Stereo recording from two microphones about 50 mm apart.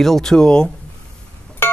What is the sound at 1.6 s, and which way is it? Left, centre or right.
Music, left.